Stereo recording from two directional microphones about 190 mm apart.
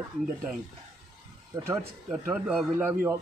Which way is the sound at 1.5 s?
15° right (ahead or behind).